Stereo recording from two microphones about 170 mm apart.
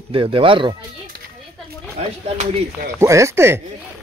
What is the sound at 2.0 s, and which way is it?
Speech, 40° right (ahead or behind).